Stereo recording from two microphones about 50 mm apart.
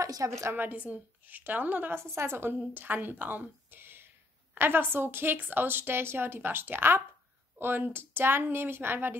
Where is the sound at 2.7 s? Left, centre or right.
Right.